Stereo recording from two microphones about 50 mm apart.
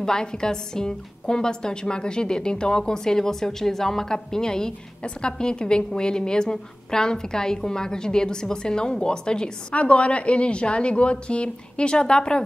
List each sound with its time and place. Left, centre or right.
0.0 s a woman's voice: centre